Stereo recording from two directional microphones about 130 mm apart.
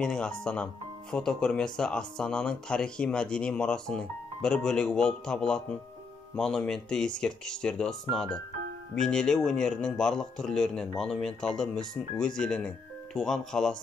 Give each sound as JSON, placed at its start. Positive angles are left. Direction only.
{"t": 0.0, "sound": "a man's voice", "side_deg": 5}